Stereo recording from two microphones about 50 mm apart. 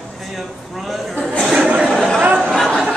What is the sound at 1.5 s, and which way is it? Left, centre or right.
Chatter, centre.